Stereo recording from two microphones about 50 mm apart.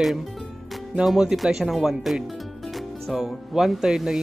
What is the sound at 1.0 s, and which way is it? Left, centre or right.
Speech, centre.